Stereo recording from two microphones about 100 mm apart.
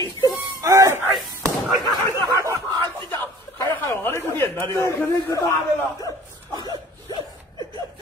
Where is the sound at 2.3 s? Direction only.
35° right (ahead or behind).